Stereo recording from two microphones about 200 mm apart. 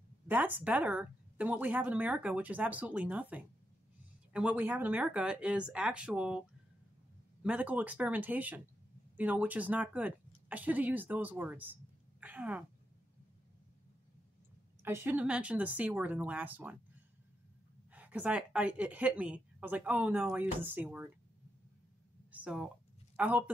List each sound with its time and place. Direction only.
0.3 s speech: 10° right (ahead or behind)
7.4 s speech: 5° right (ahead or behind)
14.8 s speech: 10° right (ahead or behind)
17.9 s speech: 10° right (ahead or behind)
22.3 s speech: 5° right (ahead or behind)